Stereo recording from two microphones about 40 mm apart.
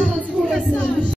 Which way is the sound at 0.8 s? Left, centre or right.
Left.